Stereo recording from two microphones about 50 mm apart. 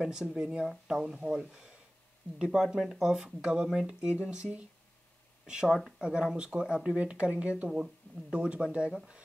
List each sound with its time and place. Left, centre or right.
0.0 s speech: centre
5.9 s speech: centre